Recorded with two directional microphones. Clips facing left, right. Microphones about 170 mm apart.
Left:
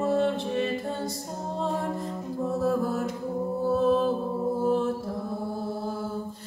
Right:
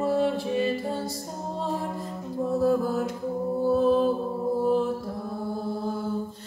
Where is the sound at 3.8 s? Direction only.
Centre (ahead or behind).